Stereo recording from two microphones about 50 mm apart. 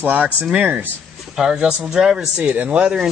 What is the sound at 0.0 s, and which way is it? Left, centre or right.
Speech, right.